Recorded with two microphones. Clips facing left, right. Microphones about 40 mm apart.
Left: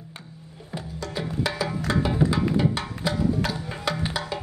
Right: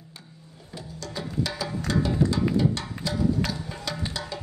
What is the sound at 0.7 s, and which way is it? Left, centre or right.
Music, left.